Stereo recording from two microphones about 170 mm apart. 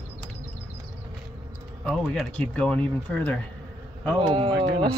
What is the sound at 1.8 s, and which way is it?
Speech, 5° left (ahead or behind).